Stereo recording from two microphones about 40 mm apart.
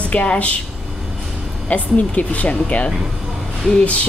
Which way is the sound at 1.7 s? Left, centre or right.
Left.